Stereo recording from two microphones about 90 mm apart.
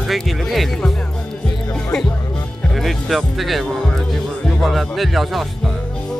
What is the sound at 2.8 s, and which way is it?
Speech, centre (ahead or behind).